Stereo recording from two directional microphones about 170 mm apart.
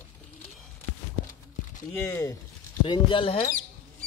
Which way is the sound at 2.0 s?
15° left (ahead or behind).